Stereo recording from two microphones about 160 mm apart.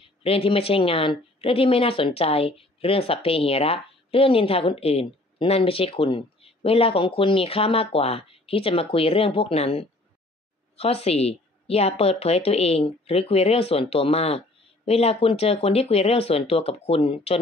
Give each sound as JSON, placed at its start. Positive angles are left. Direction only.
{"t": 0.0, "sound": "speech", "side_deg": 35}